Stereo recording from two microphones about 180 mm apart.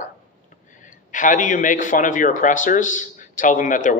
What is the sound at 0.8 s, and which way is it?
A man's voice, 45° left (ahead or behind).